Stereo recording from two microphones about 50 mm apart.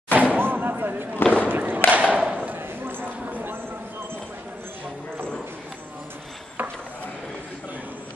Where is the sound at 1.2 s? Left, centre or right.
Left.